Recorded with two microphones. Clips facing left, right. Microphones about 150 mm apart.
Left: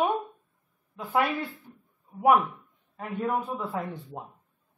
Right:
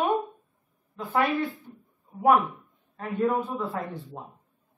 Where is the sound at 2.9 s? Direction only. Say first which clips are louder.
Right 3 dB; 5° left (ahead or behind).